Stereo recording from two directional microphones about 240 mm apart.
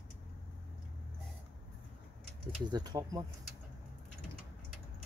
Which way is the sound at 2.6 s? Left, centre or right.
Centre.